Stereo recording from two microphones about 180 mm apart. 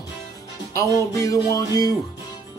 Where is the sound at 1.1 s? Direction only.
20° left (ahead or behind).